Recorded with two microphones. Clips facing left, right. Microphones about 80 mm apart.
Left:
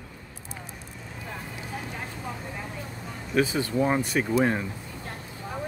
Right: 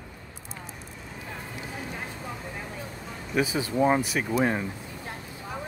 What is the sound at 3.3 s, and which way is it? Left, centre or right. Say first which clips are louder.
Speech: left 1 dB; centre.